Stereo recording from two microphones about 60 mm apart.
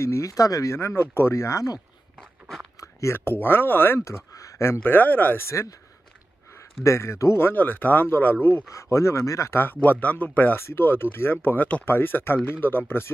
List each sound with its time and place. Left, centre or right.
0.0 s speech: left
0.7 s speech: left
2.8 s a sound: left
3.3 s speech: left
4.0 s a sound: left
4.6 s speech: left
6.8 s speech: left
7.3 s speech: left
8.9 s speech: left
9.6 s speech: left
10.5 s speech: left
11.5 s speech: left
11.8 s speech: left